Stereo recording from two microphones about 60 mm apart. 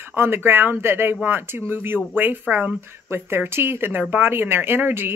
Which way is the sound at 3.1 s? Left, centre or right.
Right.